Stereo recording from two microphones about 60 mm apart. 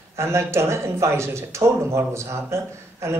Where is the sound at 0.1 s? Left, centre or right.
Right.